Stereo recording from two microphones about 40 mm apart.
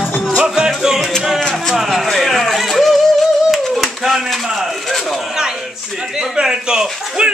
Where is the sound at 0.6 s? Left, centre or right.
Centre.